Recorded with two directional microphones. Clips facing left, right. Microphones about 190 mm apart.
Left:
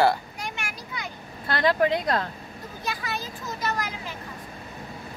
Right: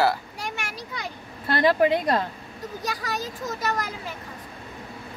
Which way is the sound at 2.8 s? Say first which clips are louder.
Right 1 dB; 40° right (ahead or behind).